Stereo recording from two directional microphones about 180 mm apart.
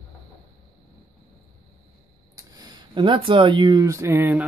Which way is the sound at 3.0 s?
30° right (ahead or behind).